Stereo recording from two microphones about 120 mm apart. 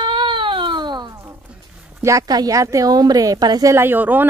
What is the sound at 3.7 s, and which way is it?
Speech, 15° right (ahead or behind).